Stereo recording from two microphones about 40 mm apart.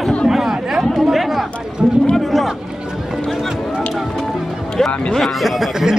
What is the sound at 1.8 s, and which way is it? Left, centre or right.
Speech, centre.